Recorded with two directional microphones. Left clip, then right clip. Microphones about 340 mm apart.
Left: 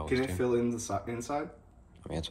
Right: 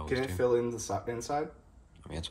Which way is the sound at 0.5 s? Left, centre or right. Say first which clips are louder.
Right 1 dB; right.